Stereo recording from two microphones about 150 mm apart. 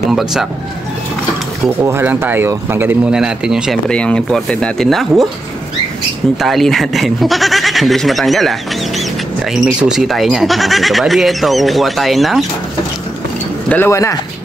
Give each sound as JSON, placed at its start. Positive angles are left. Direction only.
{"t": 0.1, "sound": "speech", "side_deg": -5}
{"t": 1.9, "sound": "speech", "side_deg": -15}
{"t": 3.9, "sound": "speech", "side_deg": 5}
{"t": 6.4, "sound": "speech", "side_deg": 0}
{"t": 13.7, "sound": "speech", "side_deg": 15}